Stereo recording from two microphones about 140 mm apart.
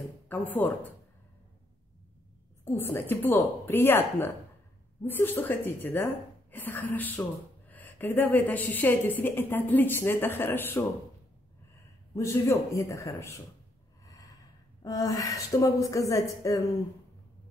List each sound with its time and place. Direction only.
0.3 s speech: 10° left (ahead or behind)
2.6 s speech: 15° left (ahead or behind)
12.2 s a woman's voice: 20° left (ahead or behind)
14.0 s snort: 25° left (ahead or behind)
14.8 s a woman's voice: 25° left (ahead or behind)